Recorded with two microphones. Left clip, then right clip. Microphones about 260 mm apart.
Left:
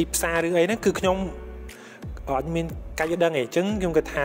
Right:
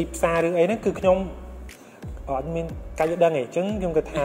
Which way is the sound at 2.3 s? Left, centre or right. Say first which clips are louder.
Left 1 dB; left.